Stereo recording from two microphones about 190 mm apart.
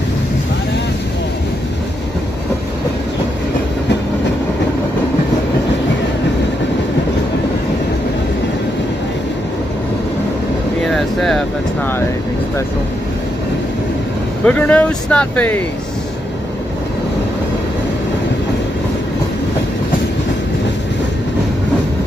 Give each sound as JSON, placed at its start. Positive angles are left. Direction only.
{"t": 10.9, "sound": "vehicle", "side_deg": 0}
{"t": 14.4, "sound": "speech", "side_deg": 10}